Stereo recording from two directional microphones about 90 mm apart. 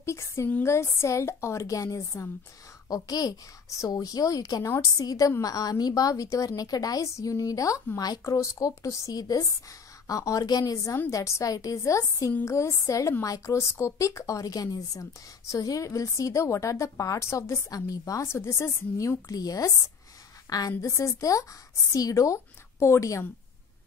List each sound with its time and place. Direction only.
0.0 s a child's voice: 30° left (ahead or behind)